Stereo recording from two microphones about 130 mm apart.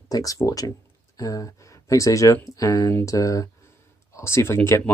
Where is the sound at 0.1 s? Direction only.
25° left (ahead or behind).